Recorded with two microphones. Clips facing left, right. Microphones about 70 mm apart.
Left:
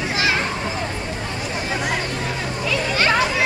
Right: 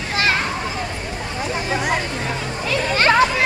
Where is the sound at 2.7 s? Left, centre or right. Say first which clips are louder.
Right 3 dB; right.